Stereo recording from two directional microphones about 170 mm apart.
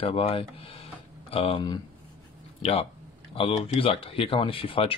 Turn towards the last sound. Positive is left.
turn(degrees=30)  # may be behind; listen again after turning